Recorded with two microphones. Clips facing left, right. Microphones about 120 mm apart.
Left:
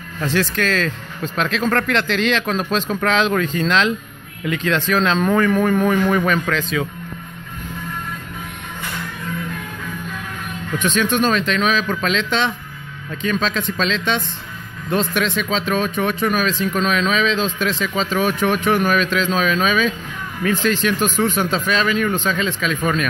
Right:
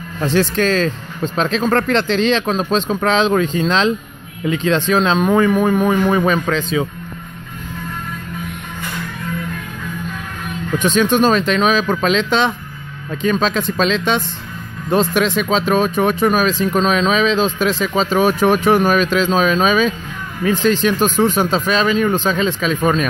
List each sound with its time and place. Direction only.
0.2 s speech: 30° right (ahead or behind)
10.8 s speech: 35° right (ahead or behind)